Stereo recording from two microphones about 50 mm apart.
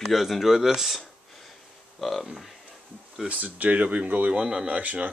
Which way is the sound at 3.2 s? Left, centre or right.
Right.